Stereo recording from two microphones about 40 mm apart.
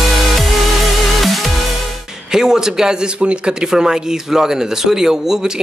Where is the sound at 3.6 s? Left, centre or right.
Centre.